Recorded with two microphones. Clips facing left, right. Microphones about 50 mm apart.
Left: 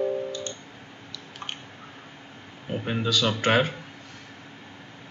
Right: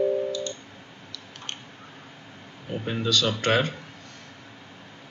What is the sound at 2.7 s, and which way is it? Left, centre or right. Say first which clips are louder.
Speech: even; centre.